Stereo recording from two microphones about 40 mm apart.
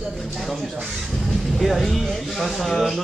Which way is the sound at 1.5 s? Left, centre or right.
Centre.